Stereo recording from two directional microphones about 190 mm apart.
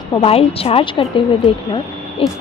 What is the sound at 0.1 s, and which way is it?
Speech, 30° left (ahead or behind).